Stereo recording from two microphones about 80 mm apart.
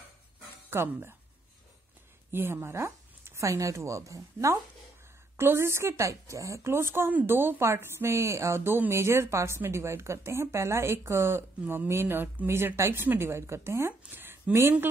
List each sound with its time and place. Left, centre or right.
0.7 s speech: right
2.3 s a woman's voice: right
11.6 s a woman's voice: right